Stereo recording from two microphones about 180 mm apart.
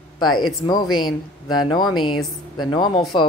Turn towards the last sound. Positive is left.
turn(degrees=25)  # may be behind; listen again after turning